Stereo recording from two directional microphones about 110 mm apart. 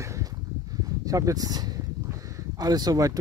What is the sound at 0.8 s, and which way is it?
Speech, 30° right (ahead or behind).